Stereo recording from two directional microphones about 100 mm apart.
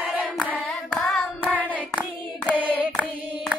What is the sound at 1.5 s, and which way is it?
Hands, 15° left (ahead or behind).